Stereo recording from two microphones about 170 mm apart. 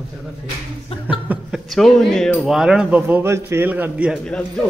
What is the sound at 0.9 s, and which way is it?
Chuckle, 35° left (ahead or behind).